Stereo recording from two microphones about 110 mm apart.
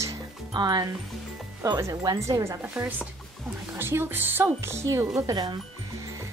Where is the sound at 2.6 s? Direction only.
10° right (ahead or behind); by 5.5 s 35° right (ahead or behind).